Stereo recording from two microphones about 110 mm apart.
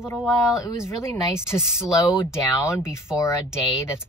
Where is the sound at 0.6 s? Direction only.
30° left (ahead or behind).